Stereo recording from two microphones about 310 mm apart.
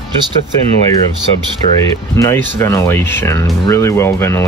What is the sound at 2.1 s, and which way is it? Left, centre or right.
Speech, centre.